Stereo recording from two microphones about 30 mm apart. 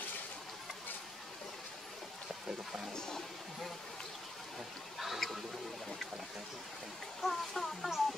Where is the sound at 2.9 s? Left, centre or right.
Left.